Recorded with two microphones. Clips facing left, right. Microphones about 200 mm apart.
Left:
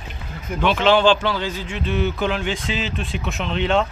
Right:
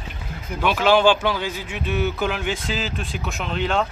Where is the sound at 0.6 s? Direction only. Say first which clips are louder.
Left 1 dB; 10° right (ahead or behind).